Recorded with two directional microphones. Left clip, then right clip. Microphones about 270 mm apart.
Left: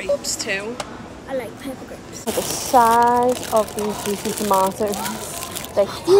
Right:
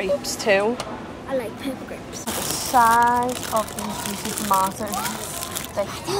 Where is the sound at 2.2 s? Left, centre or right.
Centre.